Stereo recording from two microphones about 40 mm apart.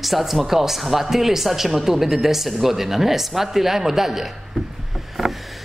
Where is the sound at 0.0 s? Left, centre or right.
Centre.